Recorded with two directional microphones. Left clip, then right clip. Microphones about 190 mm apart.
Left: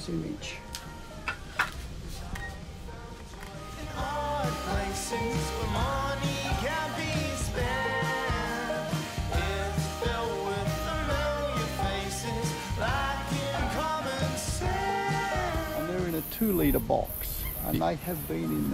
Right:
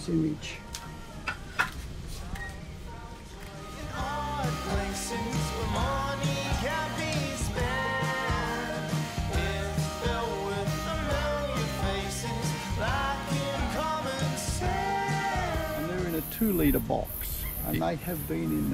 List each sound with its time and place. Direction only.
3.9 s music: centre (ahead or behind)
16.3 s snake: 45° left (ahead or behind)